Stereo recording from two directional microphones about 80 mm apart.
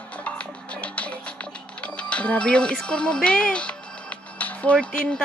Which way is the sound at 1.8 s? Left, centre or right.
Centre.